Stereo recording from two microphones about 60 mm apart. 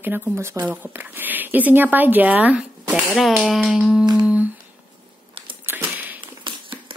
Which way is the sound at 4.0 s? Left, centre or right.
Right.